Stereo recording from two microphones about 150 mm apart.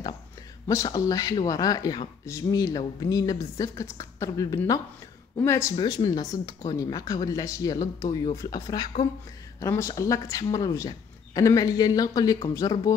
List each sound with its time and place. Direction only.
0.7 s speech: 20° left (ahead or behind)